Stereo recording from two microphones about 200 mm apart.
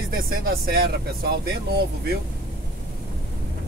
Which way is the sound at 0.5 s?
50° right (ahead or behind).